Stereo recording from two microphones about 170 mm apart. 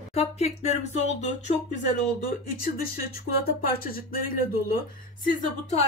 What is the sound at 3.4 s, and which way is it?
Speech, 60° left (ahead or behind).